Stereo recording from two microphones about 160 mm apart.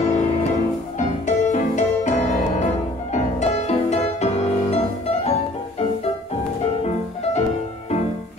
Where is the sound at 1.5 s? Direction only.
50° left (ahead or behind).